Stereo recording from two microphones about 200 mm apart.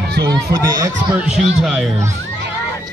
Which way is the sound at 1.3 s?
5° right (ahead or behind).